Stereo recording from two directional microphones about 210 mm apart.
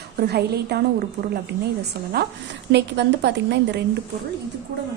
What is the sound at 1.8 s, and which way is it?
A woman's voice, 50° right (ahead or behind).